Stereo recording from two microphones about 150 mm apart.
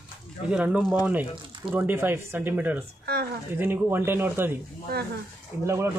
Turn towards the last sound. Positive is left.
turn(degrees=-20)  # may be behind; listen again after turning